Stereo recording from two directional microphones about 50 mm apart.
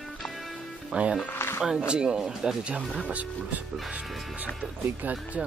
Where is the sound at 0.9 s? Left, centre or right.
Right.